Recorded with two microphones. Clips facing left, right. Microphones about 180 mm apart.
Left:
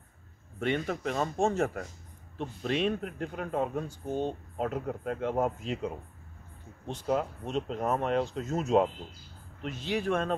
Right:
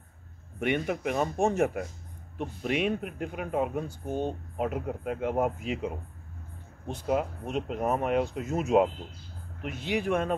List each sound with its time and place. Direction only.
0.6 s speech: 15° right (ahead or behind)
9.8 s speech: 15° right (ahead or behind)